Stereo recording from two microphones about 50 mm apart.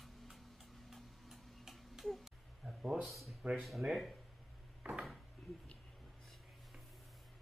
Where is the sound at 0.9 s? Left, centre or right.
Centre.